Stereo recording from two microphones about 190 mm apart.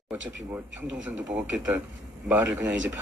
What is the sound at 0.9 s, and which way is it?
Speech, 5° right (ahead or behind).